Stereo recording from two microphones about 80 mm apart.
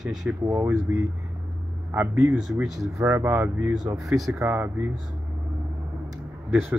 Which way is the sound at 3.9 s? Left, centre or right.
Centre.